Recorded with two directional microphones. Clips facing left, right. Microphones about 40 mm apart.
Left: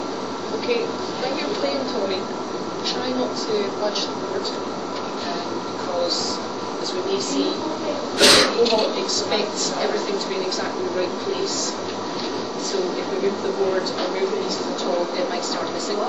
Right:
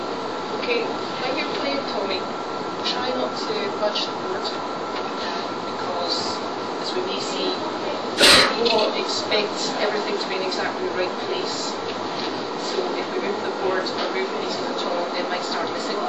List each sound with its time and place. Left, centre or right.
0.7 s speech: centre
3.2 s a woman's voice: centre
8.2 s a woman's voice: centre